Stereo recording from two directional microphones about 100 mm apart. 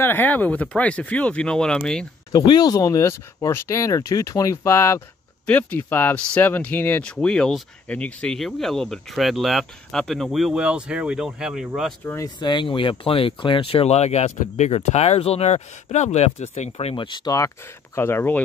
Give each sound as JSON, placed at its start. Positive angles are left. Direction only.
{"t": 0.0, "sound": "speech", "side_deg": 20}
{"t": 2.3, "sound": "speech", "side_deg": 45}
{"t": 5.5, "sound": "speech", "side_deg": 15}
{"t": 12.4, "sound": "speech", "side_deg": 50}
{"t": 16.7, "sound": "speech", "side_deg": 65}
{"t": 17.9, "sound": "speech", "side_deg": 25}